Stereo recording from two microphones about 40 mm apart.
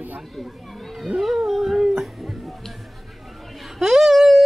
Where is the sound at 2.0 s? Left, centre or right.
Centre.